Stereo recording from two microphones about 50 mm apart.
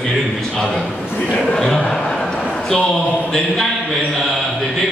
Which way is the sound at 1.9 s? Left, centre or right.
Centre.